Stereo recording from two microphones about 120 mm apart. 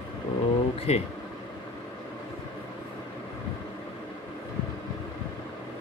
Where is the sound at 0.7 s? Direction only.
60° left (ahead or behind).